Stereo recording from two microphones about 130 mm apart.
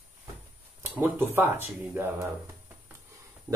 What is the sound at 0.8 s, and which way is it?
Speech, 15° right (ahead or behind).